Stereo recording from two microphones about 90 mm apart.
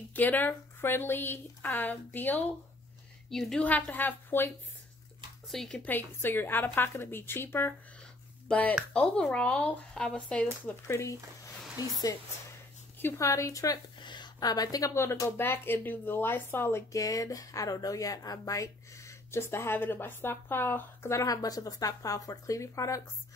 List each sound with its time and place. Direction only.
0.1 s speech: 20° left (ahead or behind)
3.3 s a woman's voice: 5° left (ahead or behind)
3.6 s speech: 15° left (ahead or behind)
5.5 s a woman's voice: 5° left (ahead or behind)
5.9 s speech: 20° left (ahead or behind)
10.9 s speech: 35° left (ahead or behind)
11.8 s speech: 45° left (ahead or behind)
13.0 s speech: 35° left (ahead or behind)
14.0 s a sound: 55° left (ahead or behind)
15.0 s speech: 30° left (ahead or behind)
17.0 s speech: 40° left (ahead or behind)